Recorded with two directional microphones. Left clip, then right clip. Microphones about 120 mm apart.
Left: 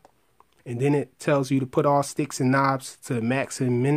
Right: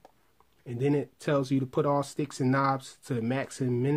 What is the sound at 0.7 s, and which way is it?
Speech, 45° left (ahead or behind).